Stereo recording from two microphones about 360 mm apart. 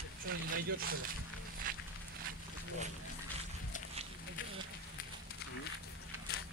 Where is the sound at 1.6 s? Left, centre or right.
Right.